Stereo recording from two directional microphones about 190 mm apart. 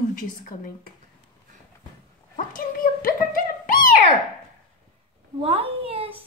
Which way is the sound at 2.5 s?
50° left (ahead or behind).